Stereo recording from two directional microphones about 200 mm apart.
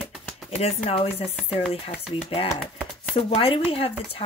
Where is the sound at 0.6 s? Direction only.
30° left (ahead or behind).